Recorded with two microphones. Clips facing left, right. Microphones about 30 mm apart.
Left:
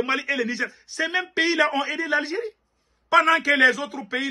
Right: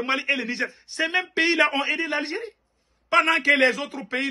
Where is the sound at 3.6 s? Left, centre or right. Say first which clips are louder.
Left 2 dB; right.